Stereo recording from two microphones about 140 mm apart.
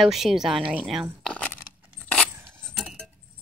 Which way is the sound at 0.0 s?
Centre (ahead or behind).